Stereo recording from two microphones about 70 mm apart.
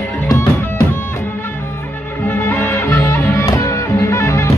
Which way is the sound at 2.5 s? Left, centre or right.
Left.